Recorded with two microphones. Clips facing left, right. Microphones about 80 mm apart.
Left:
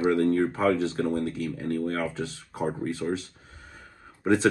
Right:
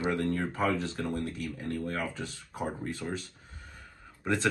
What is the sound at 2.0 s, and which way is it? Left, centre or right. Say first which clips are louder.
Speech: left 5 dB; centre.